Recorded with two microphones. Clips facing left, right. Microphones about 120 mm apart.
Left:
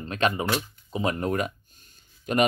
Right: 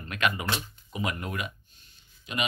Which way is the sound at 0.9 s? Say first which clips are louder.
Left 7 dB; 35° left (ahead or behind).